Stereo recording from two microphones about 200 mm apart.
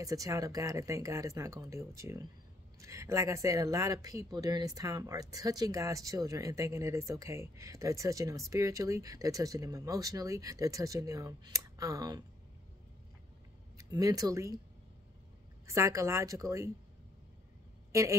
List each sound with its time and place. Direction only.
0.0 s speech: 15° right (ahead or behind)
13.8 s speech: 20° right (ahead or behind)
15.6 s speech: 15° right (ahead or behind)